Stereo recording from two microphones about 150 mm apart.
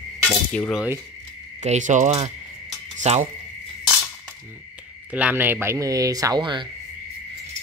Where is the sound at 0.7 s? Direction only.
15° right (ahead or behind).